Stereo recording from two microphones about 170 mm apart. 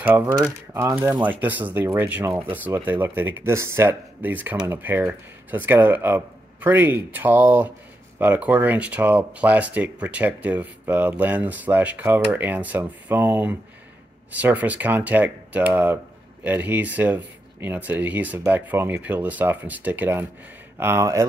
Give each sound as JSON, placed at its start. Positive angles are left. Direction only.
{"t": 0.0, "sound": "speech", "side_deg": -10}